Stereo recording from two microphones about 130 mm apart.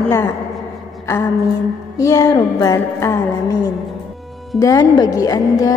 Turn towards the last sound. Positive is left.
turn(degrees=25)  # may be behind; listen again after turning